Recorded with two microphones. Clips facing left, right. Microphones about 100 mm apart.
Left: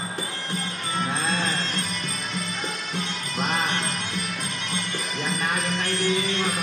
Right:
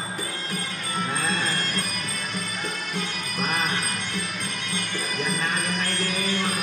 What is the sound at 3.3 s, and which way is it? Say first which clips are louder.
Music: left 1 dB; 20° left (ahead or behind).